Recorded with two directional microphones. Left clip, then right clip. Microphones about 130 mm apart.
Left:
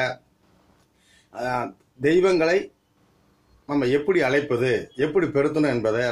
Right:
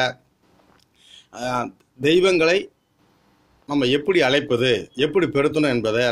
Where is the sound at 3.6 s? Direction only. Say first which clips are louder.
Right 2 dB; 20° right (ahead or behind).